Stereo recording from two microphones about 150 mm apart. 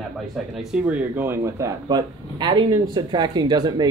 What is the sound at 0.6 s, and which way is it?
Speech, 5° right (ahead or behind).